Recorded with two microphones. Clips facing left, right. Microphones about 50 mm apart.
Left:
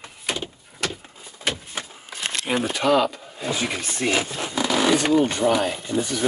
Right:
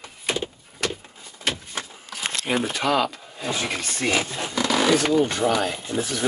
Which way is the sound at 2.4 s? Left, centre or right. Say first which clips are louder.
Left 2 dB; centre.